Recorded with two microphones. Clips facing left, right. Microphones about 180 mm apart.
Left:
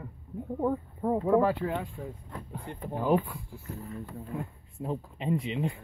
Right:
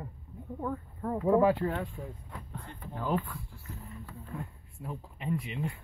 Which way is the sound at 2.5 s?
10° left (ahead or behind).